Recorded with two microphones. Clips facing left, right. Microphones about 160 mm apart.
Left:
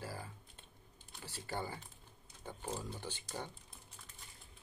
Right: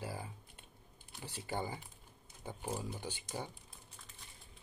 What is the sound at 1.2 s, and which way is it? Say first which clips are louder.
Speech: right 2 dB; 15° right (ahead or behind).